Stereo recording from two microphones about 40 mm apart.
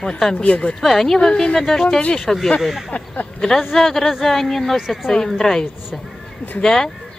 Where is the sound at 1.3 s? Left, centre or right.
Left.